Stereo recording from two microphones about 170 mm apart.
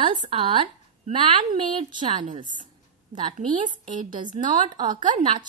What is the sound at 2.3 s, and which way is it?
Speech, 45° right (ahead or behind).